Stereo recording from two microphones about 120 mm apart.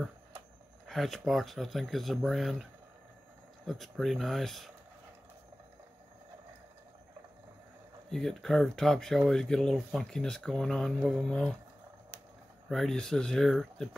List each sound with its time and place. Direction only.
0.8 s speech: centre (ahead or behind)
8.1 s speech: 5° left (ahead or behind)
12.6 s speech: centre (ahead or behind)